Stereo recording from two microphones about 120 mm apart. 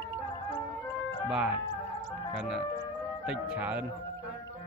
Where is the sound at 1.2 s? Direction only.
5° right (ahead or behind).